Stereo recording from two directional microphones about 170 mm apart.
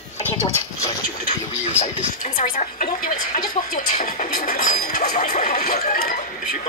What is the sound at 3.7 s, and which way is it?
Speech, 50° left (ahead or behind).